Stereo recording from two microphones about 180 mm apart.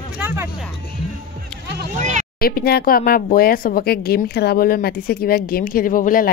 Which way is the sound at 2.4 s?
55° left (ahead or behind).